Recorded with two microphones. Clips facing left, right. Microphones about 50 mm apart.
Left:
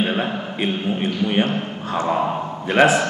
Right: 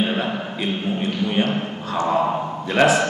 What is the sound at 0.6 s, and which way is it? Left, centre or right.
Speech, left.